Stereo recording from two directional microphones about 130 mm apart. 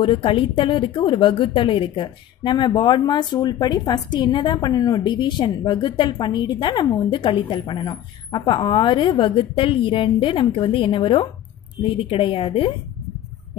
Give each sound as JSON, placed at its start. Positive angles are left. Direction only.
{"t": 0.0, "sound": "a woman's voice", "side_deg": 40}